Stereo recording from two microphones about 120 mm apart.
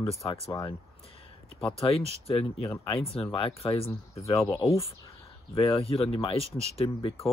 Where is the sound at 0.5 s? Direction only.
35° left (ahead or behind).